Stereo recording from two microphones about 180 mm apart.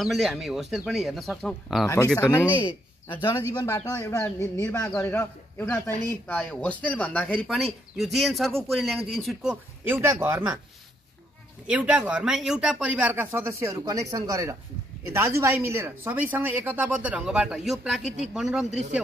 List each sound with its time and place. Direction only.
0.0 s speech: centre (ahead or behind)
3.6 s speech: 15° left (ahead or behind); by 10.6 s 10° right (ahead or behind)
11.6 s speech: 5° right (ahead or behind)
18.7 s speech: 40° right (ahead or behind)